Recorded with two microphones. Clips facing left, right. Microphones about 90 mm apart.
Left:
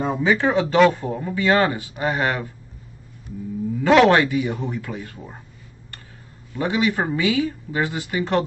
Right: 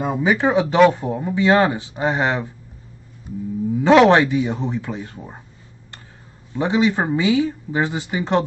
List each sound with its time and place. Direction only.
0.0 s speech: 15° right (ahead or behind)
3.7 s speech: 15° right (ahead or behind)
6.5 s speech: 20° right (ahead or behind)